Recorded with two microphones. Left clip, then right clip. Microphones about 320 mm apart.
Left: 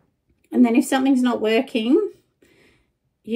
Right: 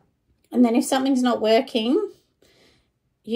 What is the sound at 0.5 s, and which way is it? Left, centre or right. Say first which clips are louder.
Speech: left 2 dB; centre.